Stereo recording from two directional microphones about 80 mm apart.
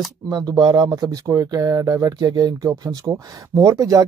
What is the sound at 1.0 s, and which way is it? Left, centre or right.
Speech, right.